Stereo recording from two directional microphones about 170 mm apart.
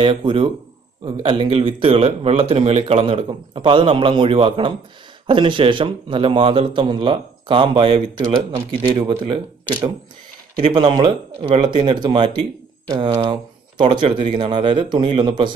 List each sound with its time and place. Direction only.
0.0 s speech: 30° right (ahead or behind)